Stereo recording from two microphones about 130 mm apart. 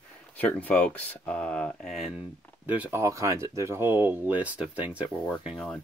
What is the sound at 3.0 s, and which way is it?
Speech, 25° right (ahead or behind).